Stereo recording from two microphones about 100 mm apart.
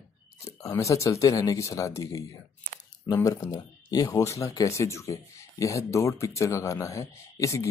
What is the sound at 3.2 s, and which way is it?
Speech, 35° left (ahead or behind).